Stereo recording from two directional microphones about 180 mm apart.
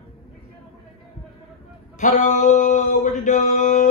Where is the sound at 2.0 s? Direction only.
45° left (ahead or behind).